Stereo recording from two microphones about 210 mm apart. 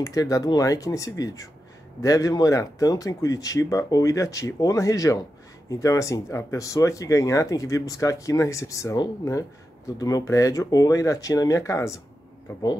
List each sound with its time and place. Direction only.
0.0 s speech: 15° left (ahead or behind)